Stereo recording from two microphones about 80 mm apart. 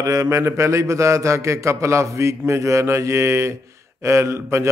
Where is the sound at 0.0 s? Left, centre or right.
Right.